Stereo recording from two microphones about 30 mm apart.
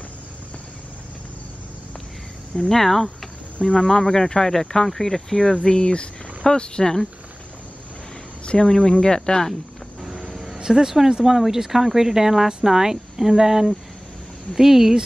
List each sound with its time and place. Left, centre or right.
2.7 s speech: centre
3.7 s speech: left
6.8 s speech: centre
8.5 s speech: left
10.6 s speech: centre